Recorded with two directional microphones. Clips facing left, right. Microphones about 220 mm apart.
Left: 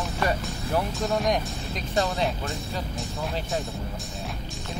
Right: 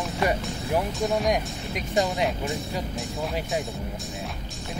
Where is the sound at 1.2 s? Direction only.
10° right (ahead or behind).